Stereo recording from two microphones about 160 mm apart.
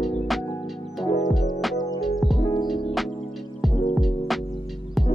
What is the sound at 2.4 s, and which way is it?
Music, 25° left (ahead or behind).